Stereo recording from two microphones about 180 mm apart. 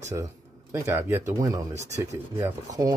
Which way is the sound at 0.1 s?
15° right (ahead or behind).